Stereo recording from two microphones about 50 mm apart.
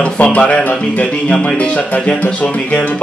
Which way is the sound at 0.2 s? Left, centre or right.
Left.